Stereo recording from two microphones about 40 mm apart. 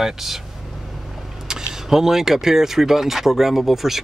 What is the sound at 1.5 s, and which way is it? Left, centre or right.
Speech, centre.